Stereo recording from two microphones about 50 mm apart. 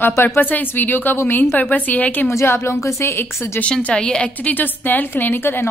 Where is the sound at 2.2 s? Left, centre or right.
Left.